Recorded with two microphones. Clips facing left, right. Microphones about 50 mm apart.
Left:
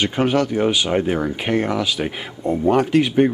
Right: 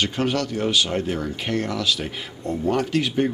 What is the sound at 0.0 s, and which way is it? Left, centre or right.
Speech, centre.